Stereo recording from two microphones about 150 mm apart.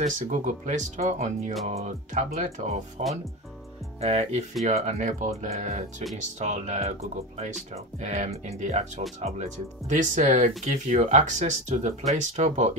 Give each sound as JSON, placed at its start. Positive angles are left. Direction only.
{"t": 0.0, "sound": "speech", "side_deg": -55}